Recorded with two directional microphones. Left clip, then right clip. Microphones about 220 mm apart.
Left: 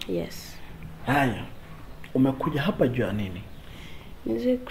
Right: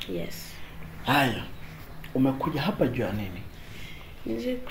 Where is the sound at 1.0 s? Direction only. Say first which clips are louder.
Even; 15° left (ahead or behind).